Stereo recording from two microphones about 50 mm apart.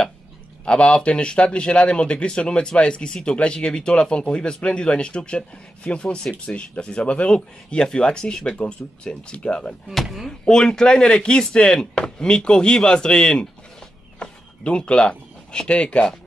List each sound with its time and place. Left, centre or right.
0.7 s speech: left